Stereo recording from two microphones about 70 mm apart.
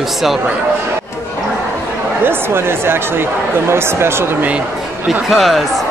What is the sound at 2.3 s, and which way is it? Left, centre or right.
Speech, right.